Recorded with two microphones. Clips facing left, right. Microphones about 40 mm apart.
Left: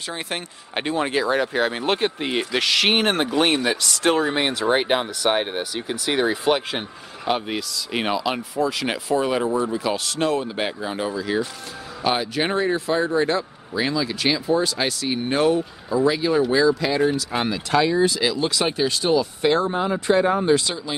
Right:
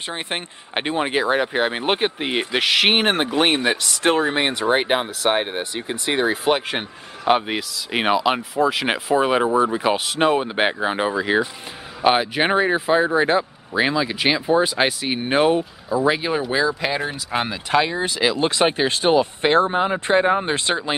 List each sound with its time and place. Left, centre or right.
0.1 s speech: right; by 6.8 s centre
6.8 s speech: right
8.4 s speech: centre
8.8 s speech: right
10.4 s speech: right